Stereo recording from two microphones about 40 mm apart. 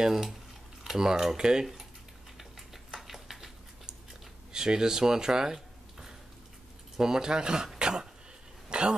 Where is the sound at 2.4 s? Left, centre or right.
Centre.